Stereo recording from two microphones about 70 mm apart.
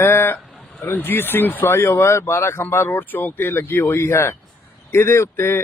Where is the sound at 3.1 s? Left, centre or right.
Left.